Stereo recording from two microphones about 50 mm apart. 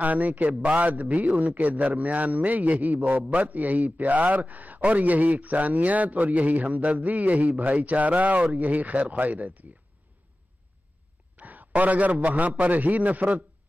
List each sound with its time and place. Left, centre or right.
0.0 s a man's voice: right
11.3 s a man's voice: right